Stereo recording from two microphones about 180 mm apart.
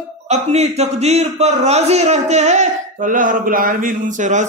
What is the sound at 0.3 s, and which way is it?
A man's voice, 35° right (ahead or behind).